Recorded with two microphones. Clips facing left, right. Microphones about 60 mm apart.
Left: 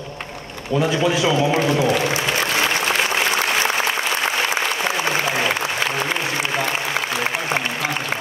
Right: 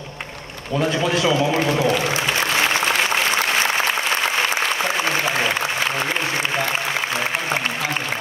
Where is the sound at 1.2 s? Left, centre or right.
Left.